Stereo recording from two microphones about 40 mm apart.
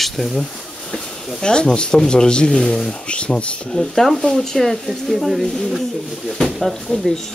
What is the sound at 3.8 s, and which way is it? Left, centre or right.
Speech, centre.